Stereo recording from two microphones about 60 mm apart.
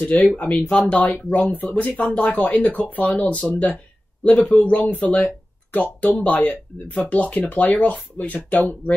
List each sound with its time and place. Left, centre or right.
0.0 s speech: left
3.5 s a sound: left
4.6 s speech: left